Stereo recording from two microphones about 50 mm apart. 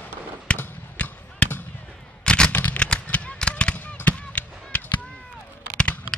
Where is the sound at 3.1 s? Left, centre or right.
Left.